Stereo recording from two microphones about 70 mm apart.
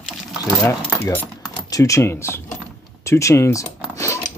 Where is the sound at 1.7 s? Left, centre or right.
Left.